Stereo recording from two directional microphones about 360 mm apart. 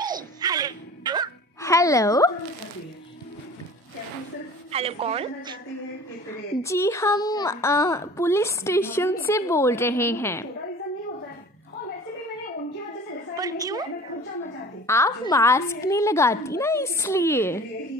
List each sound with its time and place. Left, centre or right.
0.0 s music: centre
1.6 s speech: centre
4.6 s a woman's voice: centre
6.6 s a woman's voice: centre
13.4 s a sound: centre
14.9 s a woman's voice: centre